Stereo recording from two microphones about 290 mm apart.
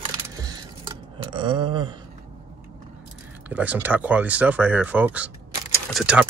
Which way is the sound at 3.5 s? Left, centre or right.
Centre.